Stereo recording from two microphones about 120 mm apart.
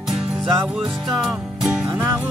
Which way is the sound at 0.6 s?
5° right (ahead or behind).